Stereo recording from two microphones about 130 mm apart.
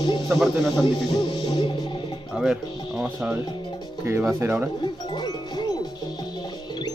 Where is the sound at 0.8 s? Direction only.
40° left (ahead or behind).